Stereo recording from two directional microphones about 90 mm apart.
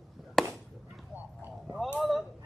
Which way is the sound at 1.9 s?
Centre (ahead or behind).